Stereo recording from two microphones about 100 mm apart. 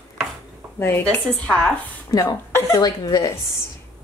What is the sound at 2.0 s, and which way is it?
Speech, 40° left (ahead or behind).